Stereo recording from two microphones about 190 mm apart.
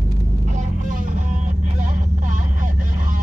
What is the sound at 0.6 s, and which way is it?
Vehicle, 40° right (ahead or behind).